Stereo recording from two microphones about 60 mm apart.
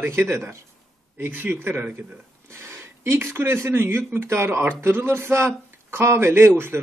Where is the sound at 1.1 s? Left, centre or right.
Right.